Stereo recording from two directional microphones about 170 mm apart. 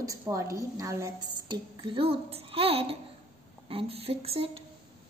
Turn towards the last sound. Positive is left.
turn(degrees=-35)  # may be behind; listen again after turning